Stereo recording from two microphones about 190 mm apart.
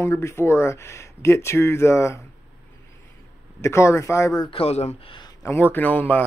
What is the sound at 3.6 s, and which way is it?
A man's voice, 15° left (ahead or behind).